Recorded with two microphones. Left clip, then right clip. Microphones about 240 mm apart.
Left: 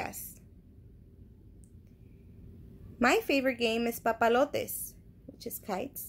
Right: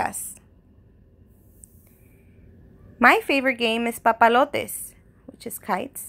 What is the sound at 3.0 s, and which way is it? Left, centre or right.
A woman's voice, centre.